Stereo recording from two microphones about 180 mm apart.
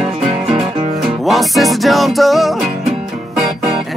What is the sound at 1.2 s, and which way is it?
Music, centre (ahead or behind).